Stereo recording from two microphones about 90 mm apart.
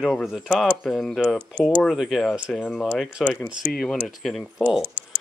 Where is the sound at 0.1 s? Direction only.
Centre (ahead or behind).